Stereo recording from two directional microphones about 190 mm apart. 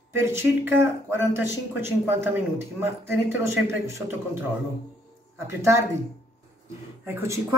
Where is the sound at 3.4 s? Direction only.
15° right (ahead or behind).